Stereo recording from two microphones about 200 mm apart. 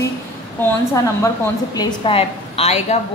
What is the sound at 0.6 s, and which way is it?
Speech, 15° left (ahead or behind).